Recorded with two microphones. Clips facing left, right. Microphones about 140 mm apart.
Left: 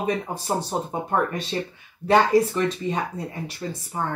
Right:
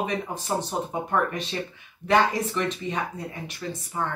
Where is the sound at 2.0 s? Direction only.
30° left (ahead or behind).